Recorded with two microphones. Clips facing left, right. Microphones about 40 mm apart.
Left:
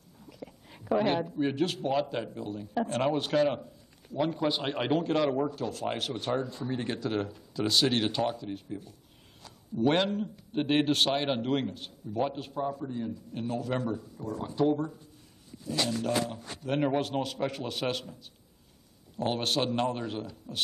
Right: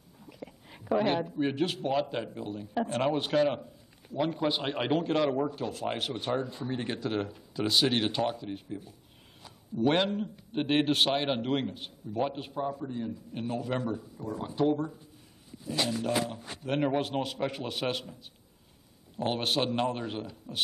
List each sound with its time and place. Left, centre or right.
0.3 s whispering: centre
0.8 s speech: centre
1.4 s a man's voice: centre
5.5 s a man's voice: centre
19.1 s a man's voice: centre